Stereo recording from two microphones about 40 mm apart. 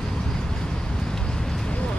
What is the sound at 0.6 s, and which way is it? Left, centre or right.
Vehicle, centre.